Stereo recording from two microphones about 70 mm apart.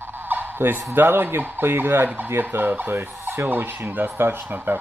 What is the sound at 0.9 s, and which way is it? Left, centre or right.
Speech, right.